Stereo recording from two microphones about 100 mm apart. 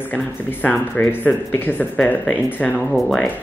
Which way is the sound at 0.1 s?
15° left (ahead or behind).